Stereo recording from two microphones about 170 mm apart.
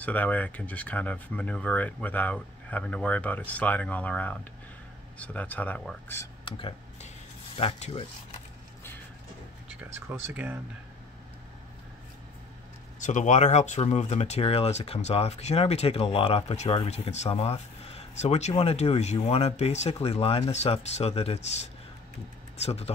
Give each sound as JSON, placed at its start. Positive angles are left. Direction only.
{"t": 0.0, "sound": "speech", "side_deg": 10}
{"t": 6.5, "sound": "speech", "side_deg": 30}
{"t": 9.8, "sound": "speech", "side_deg": -10}
{"t": 13.0, "sound": "speech", "side_deg": 45}